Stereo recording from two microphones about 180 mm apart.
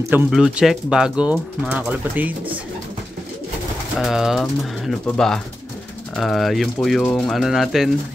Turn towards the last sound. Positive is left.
turn(degrees=0)  # may be behind; listen again after turning